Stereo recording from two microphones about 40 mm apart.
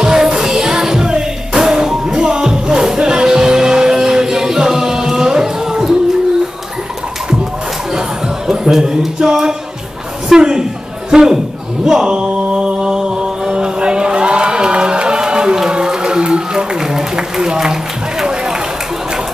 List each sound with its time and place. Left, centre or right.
0.0 s music: centre
8.5 s a man's voice: centre
11.8 s mantra: centre